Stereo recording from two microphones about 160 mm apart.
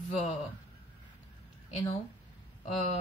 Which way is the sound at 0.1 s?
45° left (ahead or behind).